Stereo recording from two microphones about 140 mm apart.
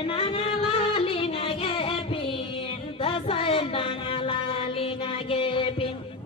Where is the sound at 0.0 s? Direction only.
40° left (ahead or behind).